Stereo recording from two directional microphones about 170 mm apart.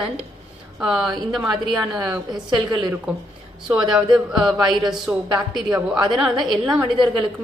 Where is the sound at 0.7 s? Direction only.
5° right (ahead or behind).